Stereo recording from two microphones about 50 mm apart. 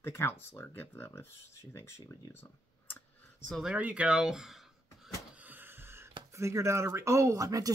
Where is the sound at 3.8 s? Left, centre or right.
Right.